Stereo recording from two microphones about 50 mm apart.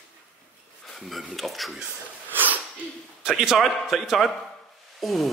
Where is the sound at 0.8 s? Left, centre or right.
Centre.